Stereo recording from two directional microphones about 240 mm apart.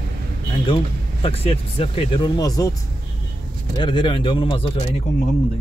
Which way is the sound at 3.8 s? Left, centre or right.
Centre.